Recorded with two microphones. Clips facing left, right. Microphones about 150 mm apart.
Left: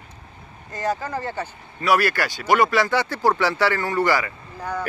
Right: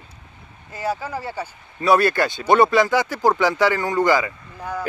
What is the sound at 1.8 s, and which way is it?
Speech, 20° right (ahead or behind).